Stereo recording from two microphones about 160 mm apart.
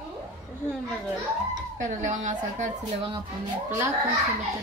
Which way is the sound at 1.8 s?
50° right (ahead or behind).